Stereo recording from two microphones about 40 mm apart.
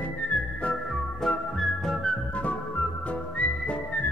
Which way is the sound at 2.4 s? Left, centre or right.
Left.